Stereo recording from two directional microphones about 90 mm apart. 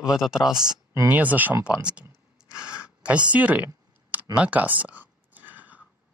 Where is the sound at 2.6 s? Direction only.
10° right (ahead or behind).